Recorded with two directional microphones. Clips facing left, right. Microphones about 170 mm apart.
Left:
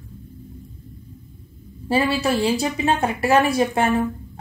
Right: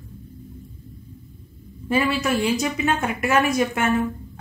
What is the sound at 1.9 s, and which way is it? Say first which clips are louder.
A woman's voice: left 1 dB; 30° left (ahead or behind).